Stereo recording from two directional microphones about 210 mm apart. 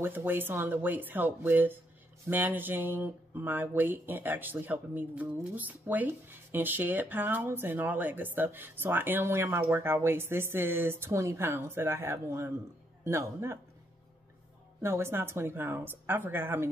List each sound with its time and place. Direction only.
0.0 s speech: 10° right (ahead or behind)
14.8 s speech: 10° right (ahead or behind)